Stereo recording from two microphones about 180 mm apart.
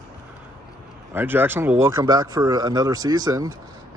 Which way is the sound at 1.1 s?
10° right (ahead or behind).